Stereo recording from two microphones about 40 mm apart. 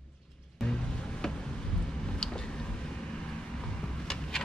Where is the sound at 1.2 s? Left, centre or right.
Centre.